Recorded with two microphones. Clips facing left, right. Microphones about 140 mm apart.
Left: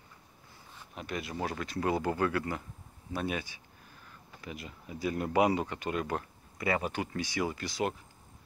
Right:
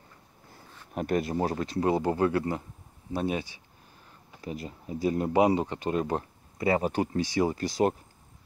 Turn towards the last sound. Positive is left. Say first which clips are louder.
# right 7 dB
turn(degrees=-40)  # may be behind; listen again after turning